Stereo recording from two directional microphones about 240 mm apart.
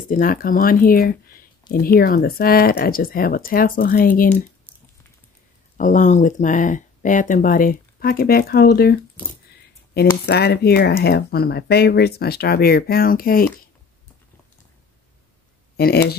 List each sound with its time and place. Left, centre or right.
0.1 s speech: left
5.8 s speech: left
15.7 s speech: left